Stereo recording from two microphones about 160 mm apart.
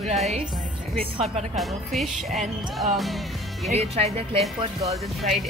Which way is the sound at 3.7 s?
40° right (ahead or behind).